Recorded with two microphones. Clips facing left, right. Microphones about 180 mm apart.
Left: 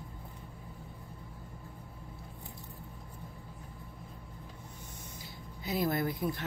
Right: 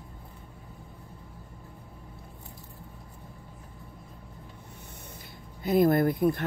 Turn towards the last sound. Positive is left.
turn(degrees=-55)  # may be behind; listen again after turning